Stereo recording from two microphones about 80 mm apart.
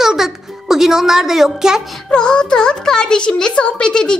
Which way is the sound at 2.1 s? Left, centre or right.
Centre.